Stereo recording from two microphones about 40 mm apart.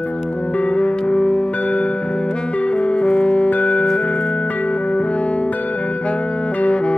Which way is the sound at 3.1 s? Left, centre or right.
Centre.